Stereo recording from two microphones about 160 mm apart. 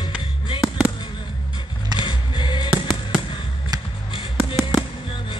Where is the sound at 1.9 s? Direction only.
30° left (ahead or behind).